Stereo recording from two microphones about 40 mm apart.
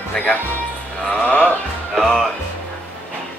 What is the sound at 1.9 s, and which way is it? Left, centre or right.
Speech, centre.